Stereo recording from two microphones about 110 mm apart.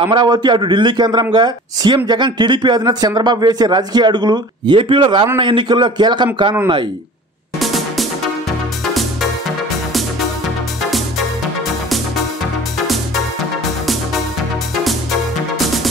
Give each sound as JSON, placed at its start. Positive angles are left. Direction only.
{"t": 0.0, "sound": "a man's voice", "side_deg": -45}
{"t": 7.6, "sound": "music", "side_deg": 0}